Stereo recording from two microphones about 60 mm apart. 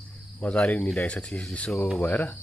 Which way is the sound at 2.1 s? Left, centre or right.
Left.